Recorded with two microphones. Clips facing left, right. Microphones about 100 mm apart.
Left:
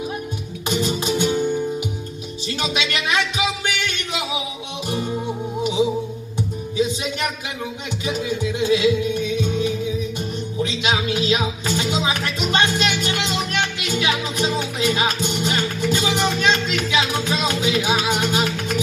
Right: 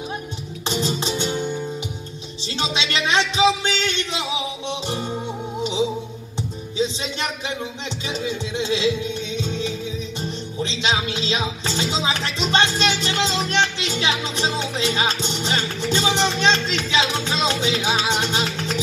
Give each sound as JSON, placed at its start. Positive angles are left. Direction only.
{"t": 0.7, "sound": "music", "side_deg": -30}
{"t": 2.6, "sound": "music", "side_deg": -25}
{"t": 6.8, "sound": "music", "side_deg": -30}